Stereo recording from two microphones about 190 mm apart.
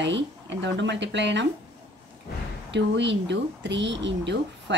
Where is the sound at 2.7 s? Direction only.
70° right (ahead or behind).